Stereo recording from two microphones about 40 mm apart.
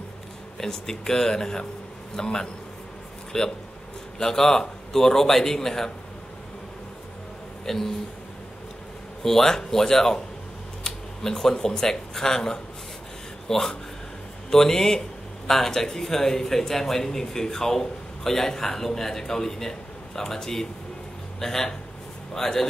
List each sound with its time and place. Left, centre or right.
0.6 s speech: centre
7.6 s speech: centre
9.2 s speech: centre